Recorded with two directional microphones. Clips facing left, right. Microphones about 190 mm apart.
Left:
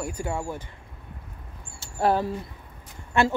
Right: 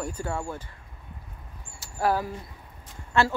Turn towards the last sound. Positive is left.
turn(degrees=20)  # may be behind; listen again after turning